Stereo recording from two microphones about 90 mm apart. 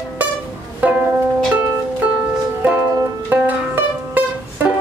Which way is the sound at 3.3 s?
20° right (ahead or behind).